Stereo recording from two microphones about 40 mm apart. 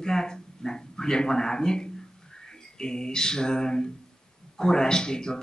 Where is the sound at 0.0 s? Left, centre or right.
Centre.